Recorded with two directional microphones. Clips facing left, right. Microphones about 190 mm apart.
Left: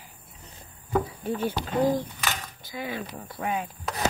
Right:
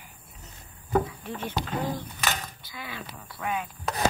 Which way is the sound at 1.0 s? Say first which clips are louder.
Left 7 dB; 35° left (ahead or behind).